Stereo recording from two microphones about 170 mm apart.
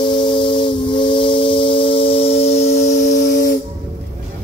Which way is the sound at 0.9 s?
30° left (ahead or behind).